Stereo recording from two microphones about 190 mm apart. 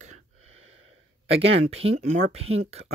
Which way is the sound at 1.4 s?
30° right (ahead or behind).